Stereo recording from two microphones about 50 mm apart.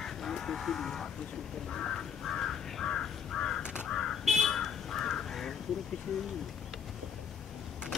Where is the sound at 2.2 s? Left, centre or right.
Centre.